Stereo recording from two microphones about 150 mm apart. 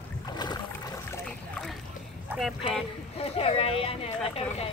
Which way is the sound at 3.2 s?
40° left (ahead or behind).